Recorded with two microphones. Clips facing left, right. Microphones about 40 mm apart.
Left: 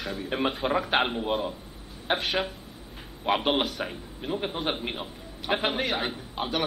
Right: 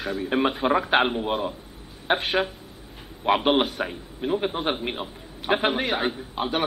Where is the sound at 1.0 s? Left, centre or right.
Centre.